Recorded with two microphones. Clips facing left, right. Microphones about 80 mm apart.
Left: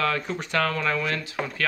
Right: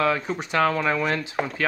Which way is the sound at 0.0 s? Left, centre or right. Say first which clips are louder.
Right 3 dB; centre.